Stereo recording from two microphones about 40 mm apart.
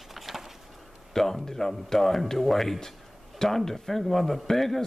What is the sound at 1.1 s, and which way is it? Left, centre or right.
Speech, centre.